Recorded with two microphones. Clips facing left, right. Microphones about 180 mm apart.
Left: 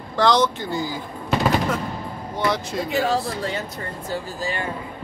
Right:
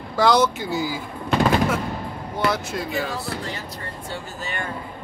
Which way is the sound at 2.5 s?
Centre (ahead or behind).